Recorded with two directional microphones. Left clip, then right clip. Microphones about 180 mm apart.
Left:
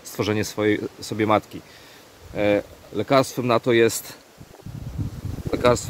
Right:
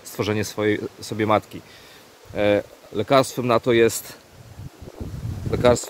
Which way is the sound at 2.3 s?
20° right (ahead or behind).